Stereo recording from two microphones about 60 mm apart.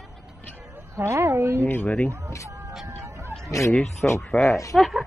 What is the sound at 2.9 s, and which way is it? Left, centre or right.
Vehicle, right.